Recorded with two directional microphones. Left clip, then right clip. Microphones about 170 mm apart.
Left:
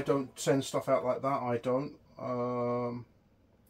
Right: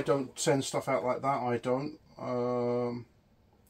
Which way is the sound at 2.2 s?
45° right (ahead or behind).